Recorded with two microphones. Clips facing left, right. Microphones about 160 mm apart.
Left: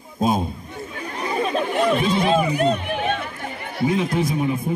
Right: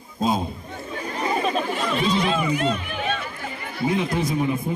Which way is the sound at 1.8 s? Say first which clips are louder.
Left 4 dB; 55° left (ahead or behind).